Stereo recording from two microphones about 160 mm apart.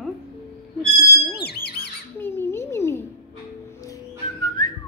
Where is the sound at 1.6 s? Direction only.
85° left.